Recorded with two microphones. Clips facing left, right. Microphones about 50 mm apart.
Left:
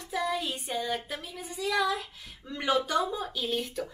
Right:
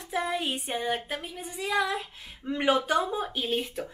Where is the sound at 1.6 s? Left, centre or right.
Right.